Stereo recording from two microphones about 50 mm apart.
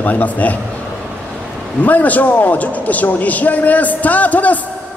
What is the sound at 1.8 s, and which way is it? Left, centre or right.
A man's voice, left.